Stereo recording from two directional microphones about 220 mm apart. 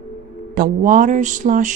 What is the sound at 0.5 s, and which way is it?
Speech, 40° right (ahead or behind).